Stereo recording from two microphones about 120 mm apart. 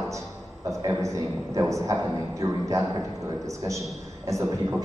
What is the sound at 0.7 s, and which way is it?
A man's voice, 25° right (ahead or behind).